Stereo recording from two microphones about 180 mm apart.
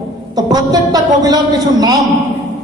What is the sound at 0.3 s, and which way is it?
A man's voice, 20° right (ahead or behind).